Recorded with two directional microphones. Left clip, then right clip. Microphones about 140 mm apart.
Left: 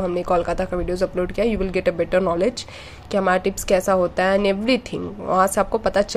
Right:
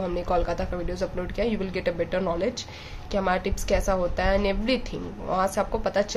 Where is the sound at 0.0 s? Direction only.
35° left (ahead or behind).